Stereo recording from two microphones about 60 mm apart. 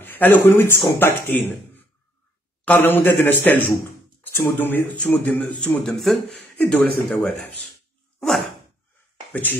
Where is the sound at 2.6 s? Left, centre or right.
Left.